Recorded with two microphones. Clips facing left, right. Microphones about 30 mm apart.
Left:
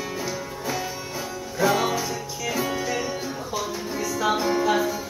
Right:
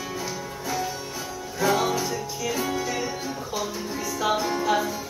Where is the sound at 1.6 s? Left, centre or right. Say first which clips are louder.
Left 1 dB; centre.